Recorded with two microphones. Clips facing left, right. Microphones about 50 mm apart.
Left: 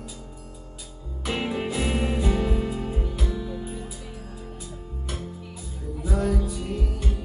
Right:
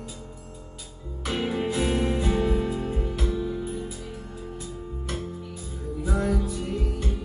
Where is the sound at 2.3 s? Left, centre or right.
Right.